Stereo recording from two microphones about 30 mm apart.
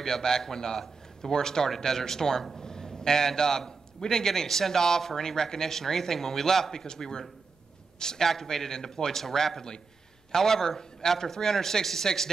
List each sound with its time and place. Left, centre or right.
0.0 s a man's voice: centre